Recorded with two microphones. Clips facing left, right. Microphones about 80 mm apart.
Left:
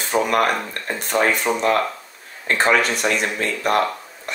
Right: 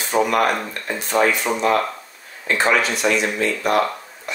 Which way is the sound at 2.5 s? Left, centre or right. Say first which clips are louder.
Left 1 dB; left.